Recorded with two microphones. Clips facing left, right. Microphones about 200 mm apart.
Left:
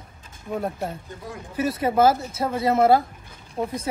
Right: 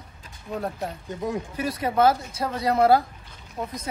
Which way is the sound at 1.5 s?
25° left (ahead or behind).